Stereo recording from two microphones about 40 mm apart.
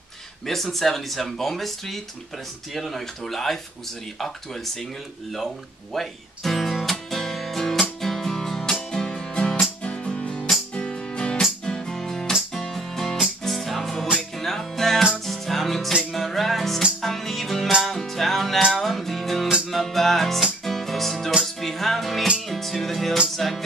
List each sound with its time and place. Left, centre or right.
0.5 s speech: centre
5.9 s music: centre